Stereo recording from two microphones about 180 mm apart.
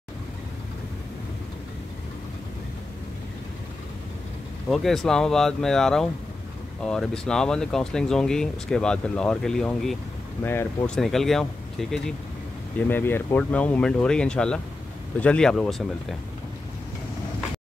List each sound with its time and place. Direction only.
4.6 s speech: centre (ahead or behind)
12.7 s speech: 10° left (ahead or behind)